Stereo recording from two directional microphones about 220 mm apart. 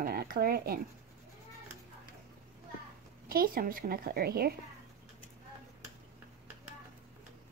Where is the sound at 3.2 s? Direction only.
40° right (ahead or behind).